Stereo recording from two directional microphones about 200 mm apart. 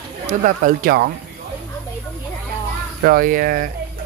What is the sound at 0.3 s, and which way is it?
Speech, 40° right (ahead or behind).